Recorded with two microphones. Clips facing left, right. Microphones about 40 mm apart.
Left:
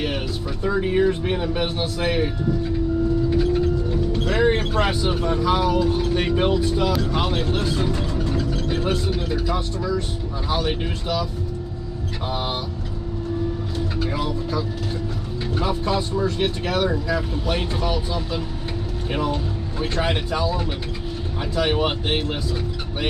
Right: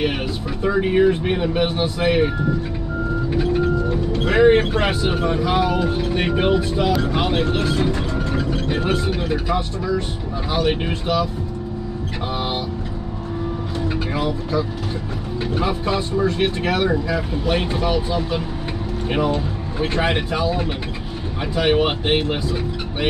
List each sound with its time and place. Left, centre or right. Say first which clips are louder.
0.7 s speech: right 3 dB; right
3.3 s vehicle: right 1 dB; right
4.2 s speech: right 7 dB; right
14.1 s speech: right 3 dB; centre